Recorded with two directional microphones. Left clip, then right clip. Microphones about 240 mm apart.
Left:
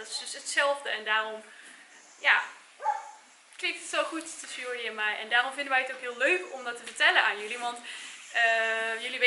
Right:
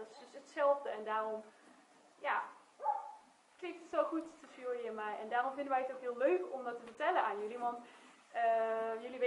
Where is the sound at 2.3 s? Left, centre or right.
Centre.